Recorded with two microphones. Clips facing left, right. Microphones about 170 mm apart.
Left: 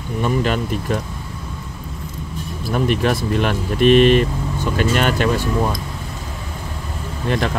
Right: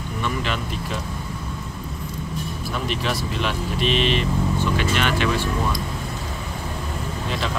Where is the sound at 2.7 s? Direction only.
50° left (ahead or behind).